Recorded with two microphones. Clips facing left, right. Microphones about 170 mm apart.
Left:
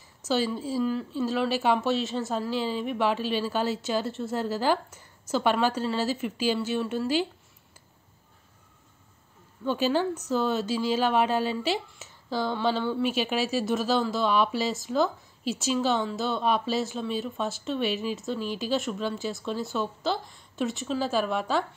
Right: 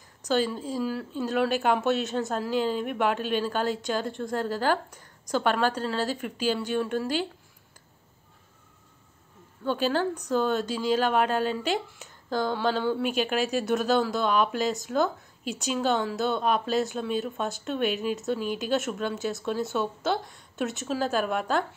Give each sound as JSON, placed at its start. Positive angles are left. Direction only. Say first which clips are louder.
{"t": 0.2, "sound": "a woman's voice", "louder": "right 1 dB", "side_deg": 5}
{"t": 2.5, "sound": "a woman's voice", "louder": "right 5 dB", "side_deg": -50}
{"t": 2.8, "sound": "a woman's voice", "louder": "even", "side_deg": 0}
{"t": 9.7, "sound": "a woman's voice", "louder": "left 1 dB", "side_deg": 10}